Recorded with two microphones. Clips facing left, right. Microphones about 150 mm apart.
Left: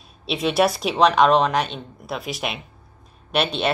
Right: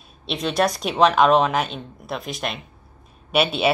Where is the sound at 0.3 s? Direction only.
5° left (ahead or behind).